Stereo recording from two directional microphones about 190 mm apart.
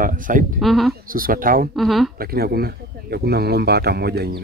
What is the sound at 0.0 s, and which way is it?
Speech, 45° right (ahead or behind).